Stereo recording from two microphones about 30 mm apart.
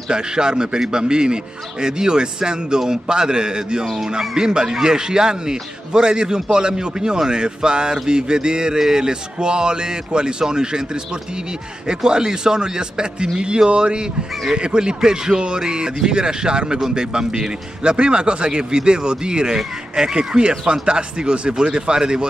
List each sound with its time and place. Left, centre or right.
0.1 s speech: right
3.8 s fowl: centre
4.4 s speech: right
11.9 s speech: right
17.9 s speech: right